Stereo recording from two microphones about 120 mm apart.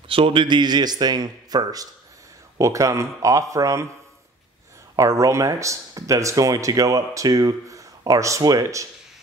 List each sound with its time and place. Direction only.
0.1 s a man's voice: 45° right (ahead or behind); by 3.9 s 25° right (ahead or behind)
4.9 s speech: 25° right (ahead or behind)